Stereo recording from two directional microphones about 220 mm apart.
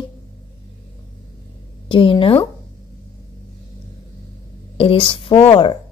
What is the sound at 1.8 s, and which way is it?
Speech, 25° left (ahead or behind).